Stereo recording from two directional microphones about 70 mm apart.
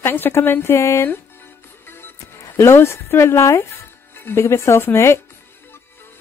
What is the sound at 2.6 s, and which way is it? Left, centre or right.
A woman's voice, left.